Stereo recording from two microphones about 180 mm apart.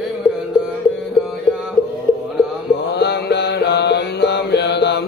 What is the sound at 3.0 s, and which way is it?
Mantra, 70° left (ahead or behind).